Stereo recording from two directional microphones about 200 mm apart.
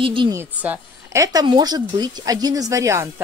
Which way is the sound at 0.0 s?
25° right (ahead or behind).